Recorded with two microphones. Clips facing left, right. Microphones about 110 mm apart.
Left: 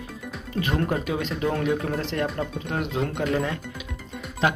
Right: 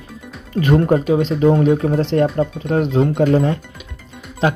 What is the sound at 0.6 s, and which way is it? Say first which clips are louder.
Speech: right 8 dB; centre (ahead or behind).